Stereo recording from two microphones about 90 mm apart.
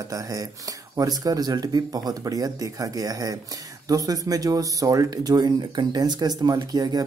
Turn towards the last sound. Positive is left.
turn(degrees=-50)  # may be behind; listen again after turning